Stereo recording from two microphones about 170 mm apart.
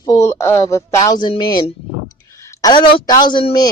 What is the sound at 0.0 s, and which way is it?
A woman's voice, 20° left (ahead or behind).